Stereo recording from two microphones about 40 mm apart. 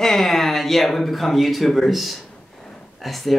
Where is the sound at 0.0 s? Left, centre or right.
Centre.